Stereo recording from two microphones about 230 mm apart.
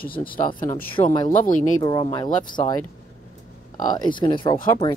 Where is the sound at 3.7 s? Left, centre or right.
Centre.